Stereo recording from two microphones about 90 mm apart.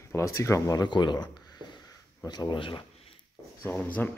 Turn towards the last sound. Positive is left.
turn(degrees=20)  # may be behind; listen again after turning